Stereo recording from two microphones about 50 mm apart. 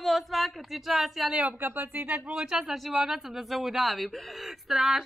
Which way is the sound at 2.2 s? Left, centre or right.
Centre.